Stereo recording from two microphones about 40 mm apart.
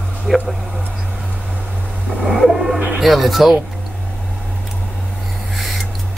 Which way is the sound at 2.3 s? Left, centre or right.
Centre.